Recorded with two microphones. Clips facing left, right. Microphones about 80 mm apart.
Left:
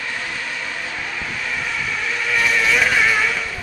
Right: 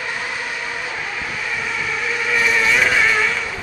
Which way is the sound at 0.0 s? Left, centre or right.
Centre.